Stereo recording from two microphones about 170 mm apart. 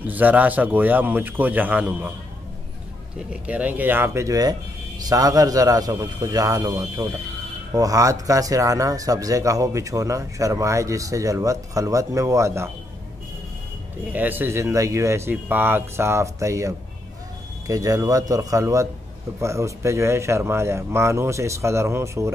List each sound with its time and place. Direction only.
0.0 s speech: 10° right (ahead or behind)
3.4 s speech: 10° right (ahead or behind)
14.1 s speech: 10° right (ahead or behind)